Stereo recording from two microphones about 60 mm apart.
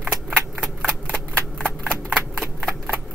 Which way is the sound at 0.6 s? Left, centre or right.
Centre.